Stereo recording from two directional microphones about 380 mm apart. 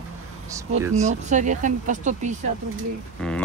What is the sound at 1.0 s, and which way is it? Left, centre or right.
Speech, centre.